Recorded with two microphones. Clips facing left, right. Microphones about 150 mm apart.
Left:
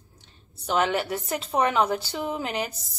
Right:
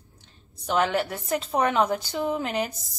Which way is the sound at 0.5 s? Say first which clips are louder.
Even; 10° left (ahead or behind).